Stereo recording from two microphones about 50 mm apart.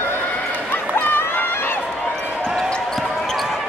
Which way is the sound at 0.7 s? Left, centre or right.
Left.